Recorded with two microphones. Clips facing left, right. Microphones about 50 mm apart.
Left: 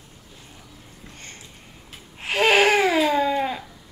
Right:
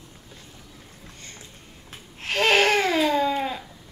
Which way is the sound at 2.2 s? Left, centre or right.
Centre.